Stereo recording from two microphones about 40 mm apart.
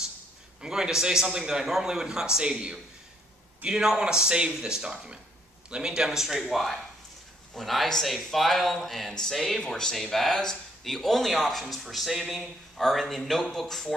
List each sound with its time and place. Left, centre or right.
0.6 s a man's voice: centre
7.5 s speech: centre
9.7 s speech: centre
9.9 s speech: centre